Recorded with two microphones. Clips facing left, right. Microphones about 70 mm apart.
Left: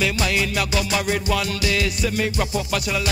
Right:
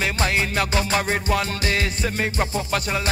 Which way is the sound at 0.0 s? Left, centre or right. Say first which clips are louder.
Left 1 dB; right.